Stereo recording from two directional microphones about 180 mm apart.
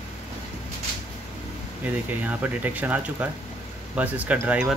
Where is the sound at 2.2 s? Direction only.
10° right (ahead or behind).